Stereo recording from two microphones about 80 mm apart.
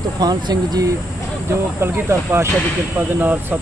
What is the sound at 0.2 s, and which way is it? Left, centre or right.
Speech, right.